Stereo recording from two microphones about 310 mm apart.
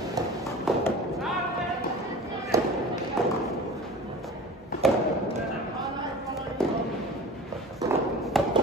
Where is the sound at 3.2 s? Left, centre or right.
Centre.